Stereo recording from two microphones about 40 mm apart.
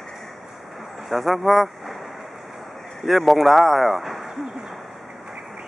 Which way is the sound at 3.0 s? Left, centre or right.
Centre.